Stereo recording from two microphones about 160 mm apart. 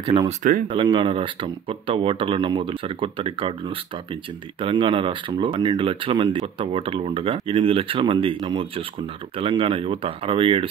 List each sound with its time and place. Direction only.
0.0 s speech: 30° right (ahead or behind)
0.3 s speech: 55° right (ahead or behind)
0.7 s speech: 30° right (ahead or behind)